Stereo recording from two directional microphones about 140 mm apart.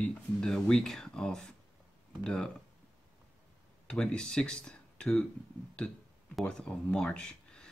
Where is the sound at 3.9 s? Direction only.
5° left (ahead or behind).